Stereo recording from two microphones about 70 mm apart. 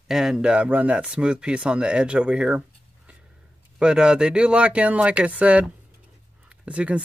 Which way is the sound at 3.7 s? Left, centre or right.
Centre.